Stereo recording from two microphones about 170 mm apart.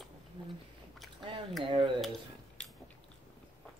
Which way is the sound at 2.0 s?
Centre (ahead or behind).